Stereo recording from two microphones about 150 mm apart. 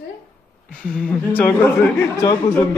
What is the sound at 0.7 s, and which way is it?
Speech, 5° left (ahead or behind).